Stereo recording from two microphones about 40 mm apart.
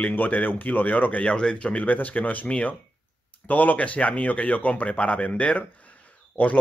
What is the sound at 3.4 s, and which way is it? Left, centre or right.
Speech, left.